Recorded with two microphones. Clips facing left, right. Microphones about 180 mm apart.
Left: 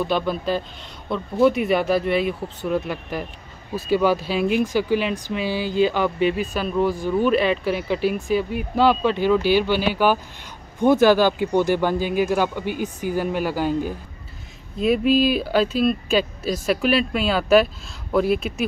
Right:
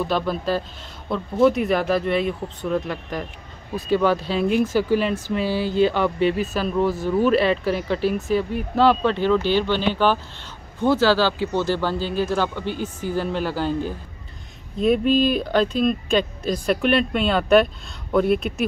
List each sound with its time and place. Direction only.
0.0 s speech: centre (ahead or behind)
6.1 s speech: 30° right (ahead or behind)
6.4 s speech: centre (ahead or behind)